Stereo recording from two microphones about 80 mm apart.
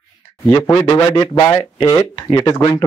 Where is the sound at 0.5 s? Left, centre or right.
Left.